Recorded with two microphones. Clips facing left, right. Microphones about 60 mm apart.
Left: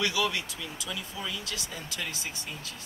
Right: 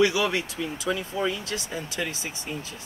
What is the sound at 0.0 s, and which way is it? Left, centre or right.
Speech, right.